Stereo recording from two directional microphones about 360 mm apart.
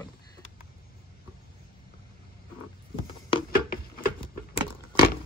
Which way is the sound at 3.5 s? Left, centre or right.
Left.